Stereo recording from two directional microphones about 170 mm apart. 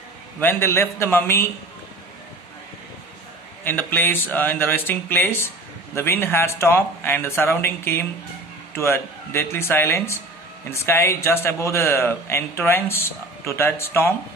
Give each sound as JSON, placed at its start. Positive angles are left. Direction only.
{"t": 0.4, "sound": "speech", "side_deg": 15}
{"t": 3.6, "sound": "speech", "side_deg": 10}